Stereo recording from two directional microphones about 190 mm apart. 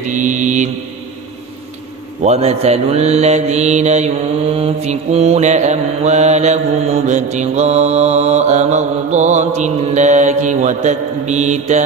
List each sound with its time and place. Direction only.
0.1 s mantra: 40° right (ahead or behind)
2.2 s mantra: 35° right (ahead or behind)